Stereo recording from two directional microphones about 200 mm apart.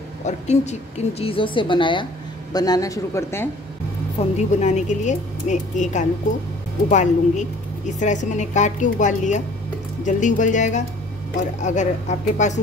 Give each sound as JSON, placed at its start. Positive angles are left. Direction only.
{"t": 0.2, "sound": "a woman's voice", "side_deg": 35}
{"t": 4.2, "sound": "a woman's voice", "side_deg": 35}